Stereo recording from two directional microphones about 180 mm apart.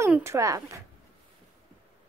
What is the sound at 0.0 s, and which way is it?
Speech, 15° right (ahead or behind).